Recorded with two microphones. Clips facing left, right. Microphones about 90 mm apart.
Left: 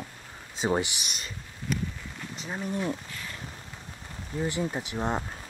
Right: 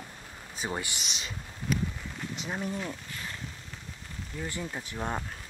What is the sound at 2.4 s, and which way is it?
Speech, centre (ahead or behind).